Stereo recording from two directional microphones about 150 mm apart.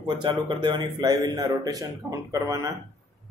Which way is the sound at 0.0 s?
30° right (ahead or behind).